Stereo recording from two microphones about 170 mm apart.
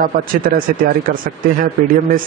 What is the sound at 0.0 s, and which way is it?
Speech, 55° right (ahead or behind).